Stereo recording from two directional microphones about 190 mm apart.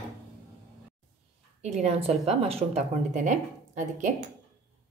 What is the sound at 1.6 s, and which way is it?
Speech, 35° right (ahead or behind).